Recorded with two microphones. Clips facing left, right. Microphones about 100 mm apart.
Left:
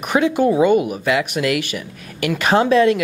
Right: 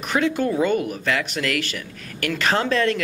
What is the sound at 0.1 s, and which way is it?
Speech, 15° left (ahead or behind).